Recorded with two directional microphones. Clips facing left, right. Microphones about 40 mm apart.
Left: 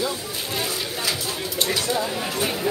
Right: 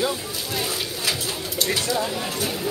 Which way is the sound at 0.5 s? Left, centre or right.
Centre.